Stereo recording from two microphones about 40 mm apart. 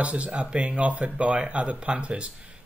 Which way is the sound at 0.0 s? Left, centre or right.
Right.